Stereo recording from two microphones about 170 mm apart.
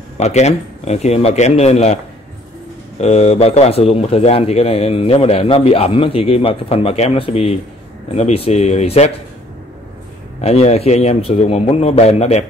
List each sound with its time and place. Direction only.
0.2 s speech: 40° left (ahead or behind)
3.0 s speech: 35° left (ahead or behind)
10.4 s speech: 40° left (ahead or behind)